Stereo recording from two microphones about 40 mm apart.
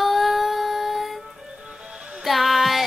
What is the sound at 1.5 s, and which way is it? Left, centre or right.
Music, centre.